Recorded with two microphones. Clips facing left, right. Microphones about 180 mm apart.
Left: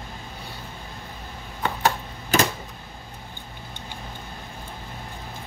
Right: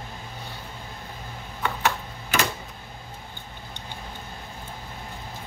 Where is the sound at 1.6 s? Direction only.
35° left (ahead or behind).